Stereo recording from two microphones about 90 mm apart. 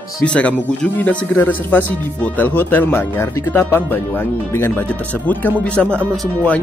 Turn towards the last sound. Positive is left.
turn(degrees=-25)  # may be behind; listen again after turning